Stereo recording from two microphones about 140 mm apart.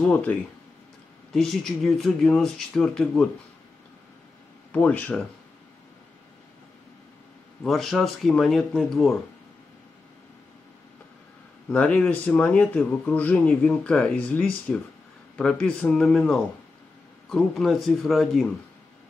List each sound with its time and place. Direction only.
0.0 s speech: 10° left (ahead or behind)
4.7 s speech: 10° left (ahead or behind)
7.6 s speech: centre (ahead or behind)
11.7 s speech: 5° left (ahead or behind)